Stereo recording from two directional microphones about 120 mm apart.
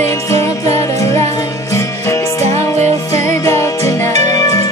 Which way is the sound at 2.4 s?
65° right (ahead or behind).